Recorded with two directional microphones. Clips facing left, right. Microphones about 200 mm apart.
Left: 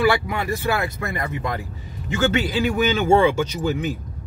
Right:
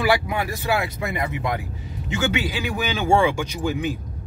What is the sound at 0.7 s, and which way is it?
Speech, 15° right (ahead or behind).